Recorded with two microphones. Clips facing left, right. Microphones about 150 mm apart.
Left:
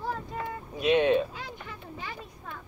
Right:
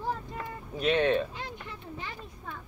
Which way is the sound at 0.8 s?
15° left (ahead or behind).